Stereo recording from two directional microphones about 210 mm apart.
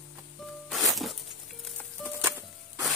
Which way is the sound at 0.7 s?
Centre (ahead or behind).